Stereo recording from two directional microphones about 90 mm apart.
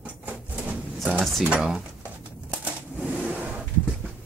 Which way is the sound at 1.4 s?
10° right (ahead or behind).